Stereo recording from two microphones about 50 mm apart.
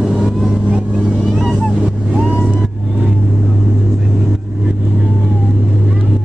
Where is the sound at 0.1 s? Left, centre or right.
Centre.